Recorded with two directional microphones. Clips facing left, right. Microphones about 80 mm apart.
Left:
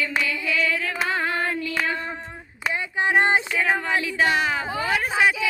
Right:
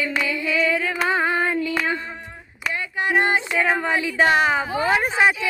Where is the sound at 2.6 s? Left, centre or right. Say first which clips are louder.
Even; left.